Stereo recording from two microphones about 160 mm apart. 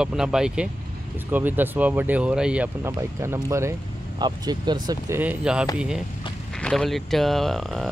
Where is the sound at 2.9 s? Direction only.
20° right (ahead or behind).